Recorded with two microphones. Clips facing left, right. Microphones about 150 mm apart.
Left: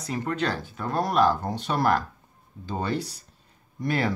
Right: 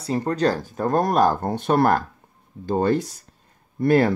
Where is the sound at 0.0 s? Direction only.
35° right (ahead or behind).